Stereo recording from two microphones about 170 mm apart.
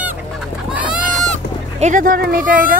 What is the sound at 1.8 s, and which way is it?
Speech, 50° right (ahead or behind).